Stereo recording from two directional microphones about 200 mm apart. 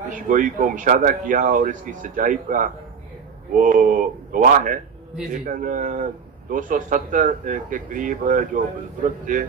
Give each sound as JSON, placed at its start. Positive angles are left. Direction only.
{"t": 0.1, "sound": "speech", "side_deg": -40}